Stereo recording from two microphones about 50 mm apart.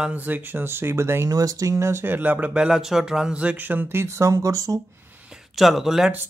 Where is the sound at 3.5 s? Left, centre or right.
Right.